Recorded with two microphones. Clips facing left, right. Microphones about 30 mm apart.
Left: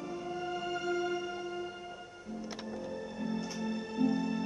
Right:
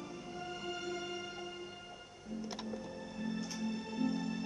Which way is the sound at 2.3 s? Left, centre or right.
Centre.